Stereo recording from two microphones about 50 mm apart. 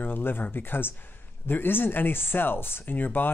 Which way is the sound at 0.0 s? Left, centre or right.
Left.